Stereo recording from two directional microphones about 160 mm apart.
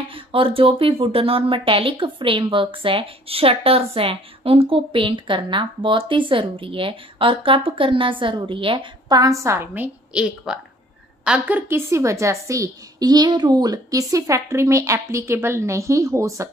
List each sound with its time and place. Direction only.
0.1 s a woman's voice: 35° right (ahead or behind); by 16.4 s 20° right (ahead or behind)